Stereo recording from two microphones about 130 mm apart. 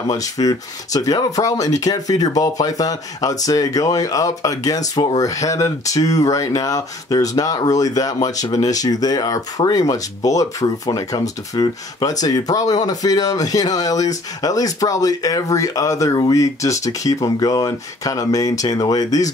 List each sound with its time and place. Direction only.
0.1 s speech: 25° left (ahead or behind)